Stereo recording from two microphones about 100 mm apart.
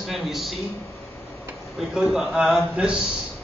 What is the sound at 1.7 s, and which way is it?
A man's voice, centre (ahead or behind).